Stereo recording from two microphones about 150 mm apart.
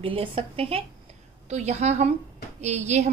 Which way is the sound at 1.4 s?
50° right (ahead or behind).